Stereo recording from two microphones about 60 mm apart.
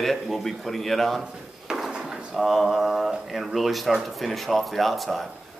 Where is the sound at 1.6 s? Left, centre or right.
Centre.